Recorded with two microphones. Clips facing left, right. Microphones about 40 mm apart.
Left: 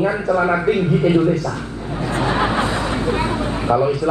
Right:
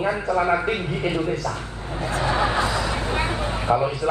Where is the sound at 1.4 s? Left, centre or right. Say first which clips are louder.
Left 4 dB; left.